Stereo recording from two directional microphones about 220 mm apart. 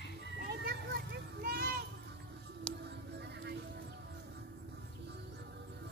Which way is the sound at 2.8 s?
50° right (ahead or behind).